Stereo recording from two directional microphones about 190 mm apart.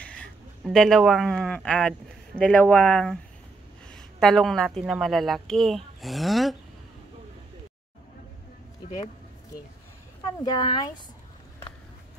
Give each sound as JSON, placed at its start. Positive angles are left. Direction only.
{"t": 0.0, "sound": "a woman's voice", "side_deg": 5}
{"t": 10.2, "sound": "speech", "side_deg": 20}